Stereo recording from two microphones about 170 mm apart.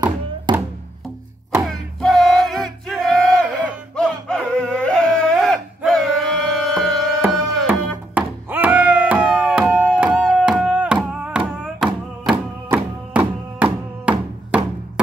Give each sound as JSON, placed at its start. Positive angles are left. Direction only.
{"t": 0.5, "sound": "music", "side_deg": -25}
{"t": 1.7, "sound": "music", "side_deg": 0}
{"t": 5.9, "sound": "a sound", "side_deg": 0}
{"t": 7.2, "sound": "music", "side_deg": -5}